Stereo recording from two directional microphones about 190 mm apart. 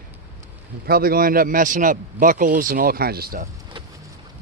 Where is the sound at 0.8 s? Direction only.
50° right (ahead or behind).